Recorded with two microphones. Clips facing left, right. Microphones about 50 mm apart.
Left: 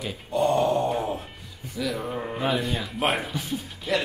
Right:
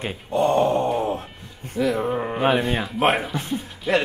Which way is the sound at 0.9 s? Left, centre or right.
Right.